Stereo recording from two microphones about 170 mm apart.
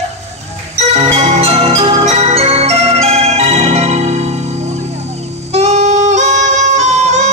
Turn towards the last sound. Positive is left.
turn(degrees=-40)  # may be behind; listen again after turning